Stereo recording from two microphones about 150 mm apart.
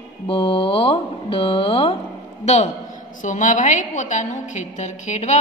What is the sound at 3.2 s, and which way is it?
A woman's voice, 55° left (ahead or behind).